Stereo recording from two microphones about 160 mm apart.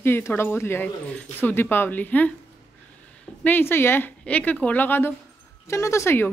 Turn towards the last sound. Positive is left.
turn(degrees=15)  # may be behind; listen again after turning